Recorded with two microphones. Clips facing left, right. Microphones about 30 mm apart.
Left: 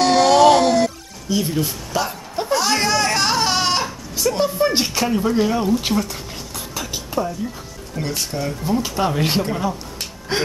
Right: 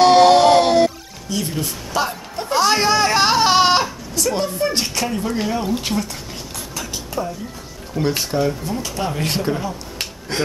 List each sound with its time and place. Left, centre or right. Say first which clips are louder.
0.0 s a sound: right 2 dB; right
1.3 s speech: left 3 dB; centre
2.0 s speech: right 2 dB; centre
2.5 s a sound: right 3 dB; centre
4.4 s speech: left 2 dB; centre
6.5 s a sound: left 2 dB; centre
8.2 s speech: right 5 dB; centre
8.6 s speech: left 4 dB; centre
10.3 s speech: left 1 dB; centre